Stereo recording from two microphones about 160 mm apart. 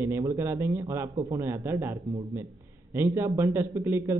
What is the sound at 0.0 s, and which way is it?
A man's voice, 20° right (ahead or behind).